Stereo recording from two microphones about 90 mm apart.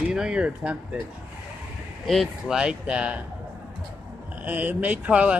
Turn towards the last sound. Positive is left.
turn(degrees=-15)  # may be behind; listen again after turning